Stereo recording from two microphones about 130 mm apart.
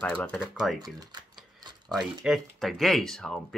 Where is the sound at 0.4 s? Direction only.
5° right (ahead or behind).